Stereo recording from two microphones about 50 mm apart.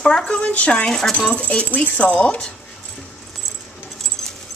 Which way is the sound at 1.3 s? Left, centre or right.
Left.